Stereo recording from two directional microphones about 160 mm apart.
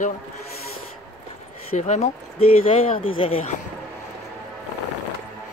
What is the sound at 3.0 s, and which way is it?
Speech, 35° left (ahead or behind).